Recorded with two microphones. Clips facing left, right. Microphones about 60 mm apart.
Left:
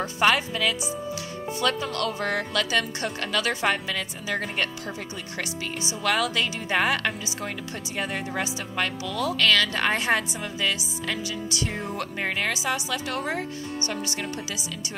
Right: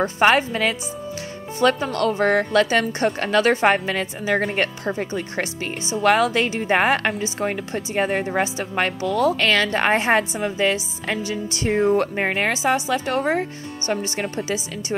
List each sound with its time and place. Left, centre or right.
0.0 s a woman's voice: right
11.7 s speech: right
12.0 s a woman's voice: right